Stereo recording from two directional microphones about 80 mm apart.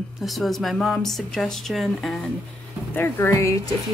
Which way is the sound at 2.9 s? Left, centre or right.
Left.